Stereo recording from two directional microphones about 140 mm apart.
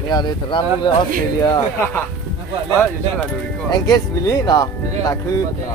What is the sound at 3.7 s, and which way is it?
Speech, 25° left (ahead or behind).